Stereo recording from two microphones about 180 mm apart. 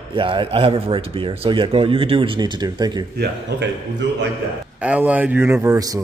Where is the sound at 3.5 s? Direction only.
65° right (ahead or behind).